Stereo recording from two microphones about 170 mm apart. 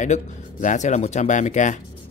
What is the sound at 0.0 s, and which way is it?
Speech, 45° left (ahead or behind).